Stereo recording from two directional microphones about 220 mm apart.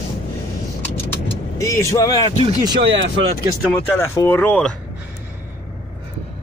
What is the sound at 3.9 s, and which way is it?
Music, 10° left (ahead or behind).